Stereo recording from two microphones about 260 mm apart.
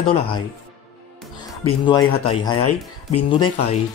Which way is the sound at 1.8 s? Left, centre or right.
Centre.